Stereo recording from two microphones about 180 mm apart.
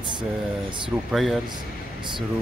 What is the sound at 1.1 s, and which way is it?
Speech, centre (ahead or behind).